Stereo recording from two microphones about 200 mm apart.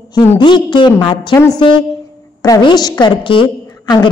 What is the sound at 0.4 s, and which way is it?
A woman's voice, 25° left (ahead or behind).